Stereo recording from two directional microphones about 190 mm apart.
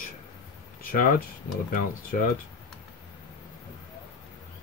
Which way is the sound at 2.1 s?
45° left (ahead or behind).